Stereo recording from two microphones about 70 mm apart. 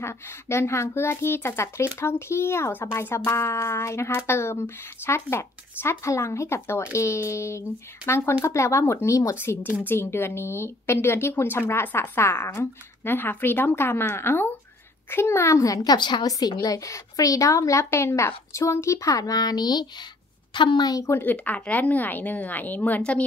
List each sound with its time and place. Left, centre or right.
0.0 s speech: left
9.4 s a woman's voice: left
20.5 s a woman's voice: left
21.2 s a woman's voice: left